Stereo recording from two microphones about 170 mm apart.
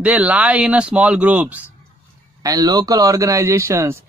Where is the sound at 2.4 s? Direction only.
20° right (ahead or behind).